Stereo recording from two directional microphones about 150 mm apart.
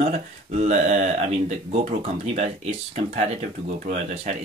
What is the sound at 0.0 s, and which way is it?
Speech, 45° right (ahead or behind).